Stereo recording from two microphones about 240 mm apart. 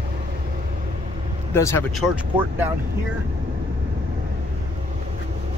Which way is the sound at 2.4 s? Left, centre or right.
Centre.